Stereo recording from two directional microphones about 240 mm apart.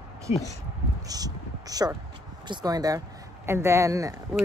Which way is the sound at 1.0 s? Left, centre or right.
Centre.